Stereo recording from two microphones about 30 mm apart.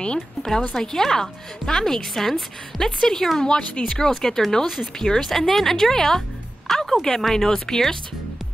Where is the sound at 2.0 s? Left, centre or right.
Centre.